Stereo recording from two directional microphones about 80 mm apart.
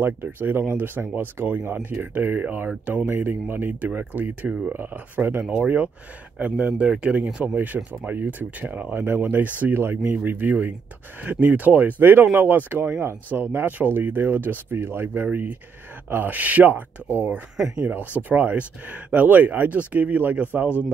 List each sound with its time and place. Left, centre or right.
0.0 s speech: right
5.4 s speech: centre
7.2 s speech: centre
7.5 s speech: right